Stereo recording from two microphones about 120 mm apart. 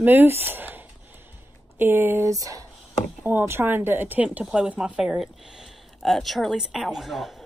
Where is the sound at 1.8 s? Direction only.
15° right (ahead or behind).